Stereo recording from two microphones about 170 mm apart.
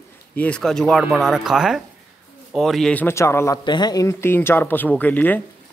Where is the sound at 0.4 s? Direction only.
5° left (ahead or behind).